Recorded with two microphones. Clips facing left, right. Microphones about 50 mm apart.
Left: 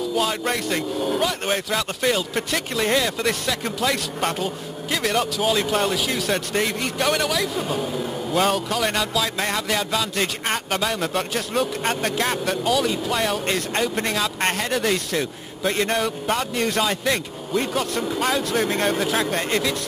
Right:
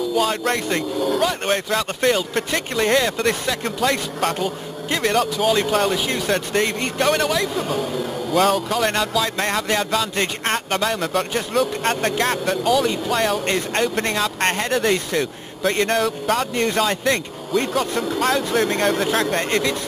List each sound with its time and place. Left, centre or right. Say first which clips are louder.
0.5 s speech: right 2 dB; centre
0.9 s speech: right 4 dB; centre
1.2 s speech: right 3 dB; centre
6.3 s speech: right 5 dB; centre
7.7 s speech: right 2 dB; centre
16.3 s speech: right 2 dB; centre